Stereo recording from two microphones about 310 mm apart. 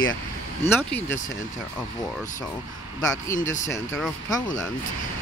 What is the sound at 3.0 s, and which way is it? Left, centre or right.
Speech, centre.